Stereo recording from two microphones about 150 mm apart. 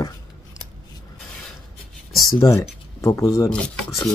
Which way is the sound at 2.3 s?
20° left (ahead or behind).